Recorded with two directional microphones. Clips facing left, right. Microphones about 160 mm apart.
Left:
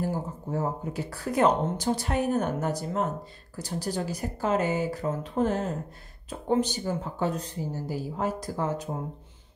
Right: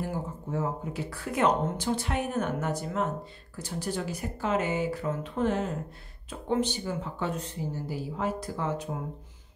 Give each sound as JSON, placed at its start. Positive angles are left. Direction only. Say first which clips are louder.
{"t": 0.0, "sound": "speech", "louder": "left 3 dB", "side_deg": 35}